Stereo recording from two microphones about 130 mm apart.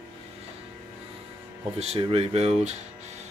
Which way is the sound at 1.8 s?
50° right (ahead or behind).